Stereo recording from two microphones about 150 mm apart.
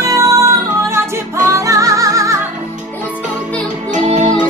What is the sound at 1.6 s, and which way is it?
Music, 20° right (ahead or behind).